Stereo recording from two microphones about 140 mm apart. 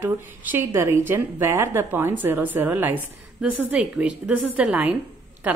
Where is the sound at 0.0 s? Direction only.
15° right (ahead or behind).